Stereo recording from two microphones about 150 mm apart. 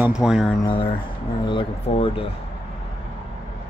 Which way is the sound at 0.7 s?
35° left (ahead or behind).